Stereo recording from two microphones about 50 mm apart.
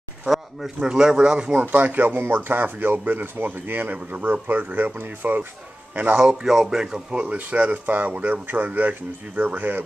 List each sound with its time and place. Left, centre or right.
0.7 s speech: centre
1.6 s speech: right
6.1 s speech: centre
7.2 s speech: right